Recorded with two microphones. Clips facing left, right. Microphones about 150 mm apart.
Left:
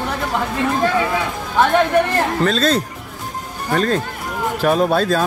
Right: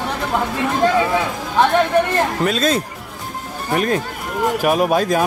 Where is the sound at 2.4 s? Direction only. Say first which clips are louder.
Left 1 dB; 10° right (ahead or behind).